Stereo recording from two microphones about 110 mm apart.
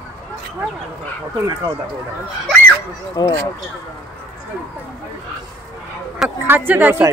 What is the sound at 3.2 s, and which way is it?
Speech, 40° left (ahead or behind).